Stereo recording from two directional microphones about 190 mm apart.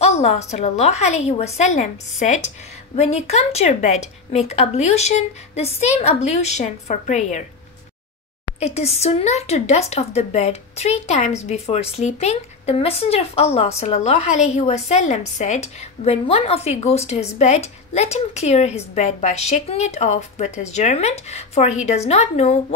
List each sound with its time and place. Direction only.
0.0 s speech: 35° left (ahead or behind)
8.5 s speech: 35° left (ahead or behind)